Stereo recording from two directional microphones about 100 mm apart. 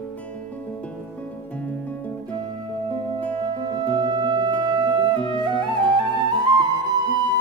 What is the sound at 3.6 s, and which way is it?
Music, 45° right (ahead or behind).